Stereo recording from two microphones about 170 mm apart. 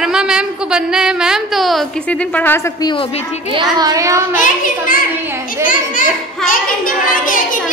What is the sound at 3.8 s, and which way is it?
Speech, 20° right (ahead or behind).